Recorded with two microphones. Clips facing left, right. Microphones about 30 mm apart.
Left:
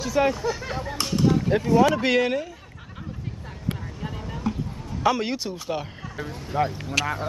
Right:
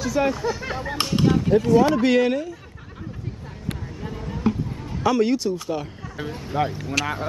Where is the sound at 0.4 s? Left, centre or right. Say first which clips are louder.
Right 2 dB; centre.